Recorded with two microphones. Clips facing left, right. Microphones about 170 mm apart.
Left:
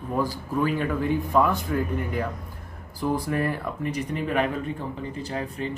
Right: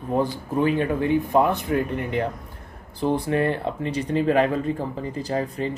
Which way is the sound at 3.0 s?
25° right (ahead or behind).